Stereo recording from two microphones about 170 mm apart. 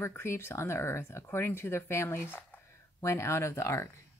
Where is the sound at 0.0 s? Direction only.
15° left (ahead or behind).